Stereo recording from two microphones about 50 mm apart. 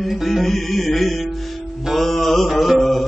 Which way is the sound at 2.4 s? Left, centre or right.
Centre.